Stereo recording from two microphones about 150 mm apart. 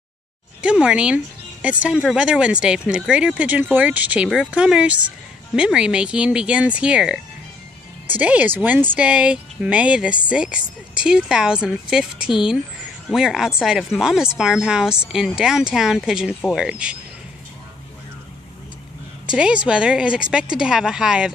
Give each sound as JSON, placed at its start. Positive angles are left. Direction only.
{"t": 0.6, "sound": "speech", "side_deg": -5}
{"t": 19.2, "sound": "speech", "side_deg": -5}